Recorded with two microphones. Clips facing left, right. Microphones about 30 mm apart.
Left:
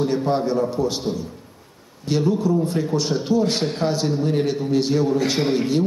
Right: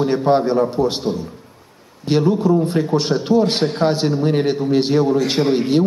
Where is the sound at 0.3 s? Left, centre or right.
Right.